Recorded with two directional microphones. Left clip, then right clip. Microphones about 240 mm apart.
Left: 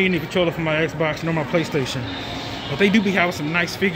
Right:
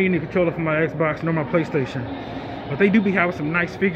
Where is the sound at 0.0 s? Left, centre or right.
Centre.